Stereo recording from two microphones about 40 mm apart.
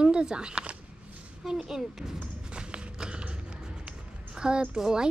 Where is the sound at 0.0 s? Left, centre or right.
Right.